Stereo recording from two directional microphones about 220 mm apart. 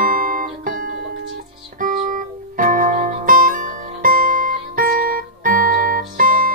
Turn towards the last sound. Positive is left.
turn(degrees=-40)  # may be behind; listen again after turning